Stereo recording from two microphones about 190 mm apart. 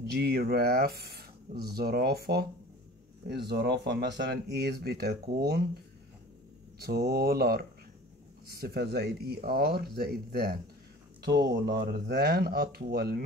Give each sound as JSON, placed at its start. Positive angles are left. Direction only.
{"t": 0.1, "sound": "speech", "side_deg": -55}
{"t": 6.8, "sound": "speech", "side_deg": -55}
{"t": 11.5, "sound": "speech", "side_deg": -60}